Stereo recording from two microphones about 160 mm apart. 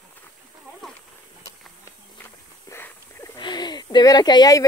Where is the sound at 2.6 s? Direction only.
15° left (ahead or behind).